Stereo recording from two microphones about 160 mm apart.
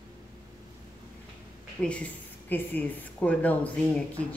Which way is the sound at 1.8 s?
10° left (ahead or behind).